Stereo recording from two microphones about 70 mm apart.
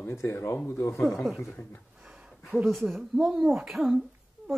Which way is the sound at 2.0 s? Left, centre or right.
Centre.